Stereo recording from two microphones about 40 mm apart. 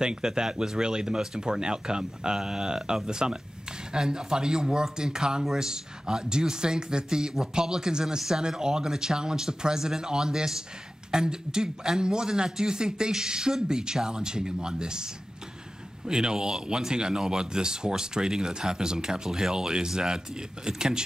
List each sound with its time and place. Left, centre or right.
0.0 s a man's voice: centre
16.1 s speech: centre